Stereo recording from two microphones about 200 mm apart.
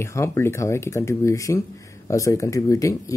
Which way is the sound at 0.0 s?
15° left (ahead or behind).